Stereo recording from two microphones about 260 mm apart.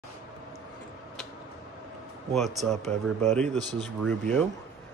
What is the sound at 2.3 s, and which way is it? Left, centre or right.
A man's voice, centre.